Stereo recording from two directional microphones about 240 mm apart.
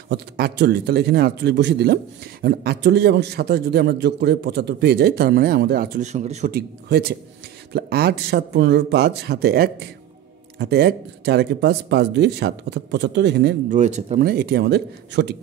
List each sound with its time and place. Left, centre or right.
0.1 s a man's voice: right
13.7 s speech: right